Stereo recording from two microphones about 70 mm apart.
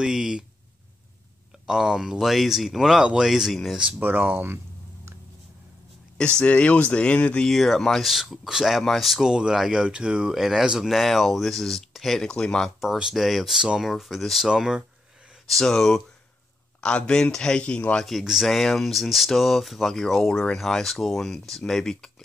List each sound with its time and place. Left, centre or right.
0.0 s speech: centre
1.7 s speech: centre
4.0 s speech: right
6.1 s speech: centre
7.4 s speech: centre
12.8 s speech: centre
15.4 s speech: centre
16.8 s speech: centre
18.0 s speech: centre